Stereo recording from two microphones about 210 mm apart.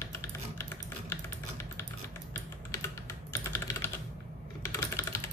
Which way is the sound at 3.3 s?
10° left (ahead or behind).